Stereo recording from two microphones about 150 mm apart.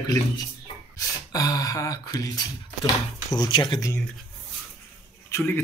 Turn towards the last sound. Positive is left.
turn(degrees=15)  # may be behind; listen again after turning